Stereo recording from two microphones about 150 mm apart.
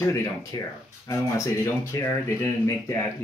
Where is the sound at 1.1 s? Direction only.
20° left (ahead or behind).